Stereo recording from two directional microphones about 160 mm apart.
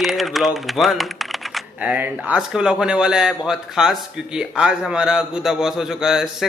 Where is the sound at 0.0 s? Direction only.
Centre (ahead or behind).